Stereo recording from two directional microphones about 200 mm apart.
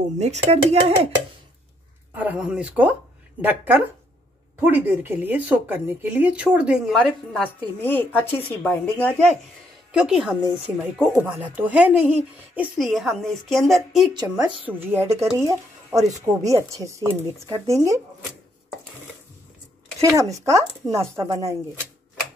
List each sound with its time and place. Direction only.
0.2 s speech: 35° right (ahead or behind)
2.1 s speech: 5° right (ahead or behind)
7.4 s a woman's voice: 10° left (ahead or behind)
9.9 s a woman's voice: 5° right (ahead or behind)
14.1 s speech: 20° right (ahead or behind)
20.0 s speech: 15° right (ahead or behind)